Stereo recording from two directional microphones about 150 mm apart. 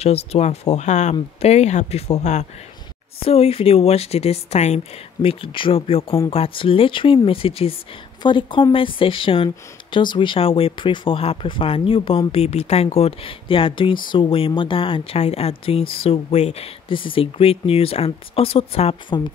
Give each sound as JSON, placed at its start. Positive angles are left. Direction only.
{"t": 0.0, "sound": "speech", "side_deg": 45}